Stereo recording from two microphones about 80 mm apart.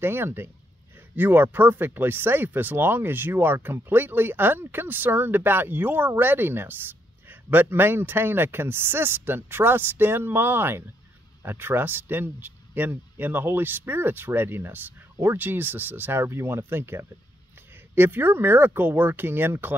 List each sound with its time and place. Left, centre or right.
0.0 s speech: right